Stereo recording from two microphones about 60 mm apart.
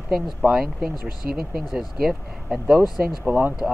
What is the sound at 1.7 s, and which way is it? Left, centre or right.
Speech, centre.